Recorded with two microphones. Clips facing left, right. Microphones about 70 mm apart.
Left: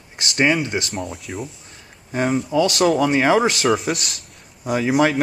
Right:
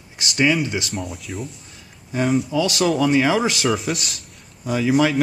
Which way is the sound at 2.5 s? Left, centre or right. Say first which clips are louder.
Left 3 dB; left.